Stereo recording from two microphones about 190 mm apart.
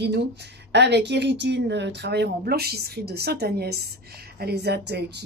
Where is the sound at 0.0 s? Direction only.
60° right (ahead or behind).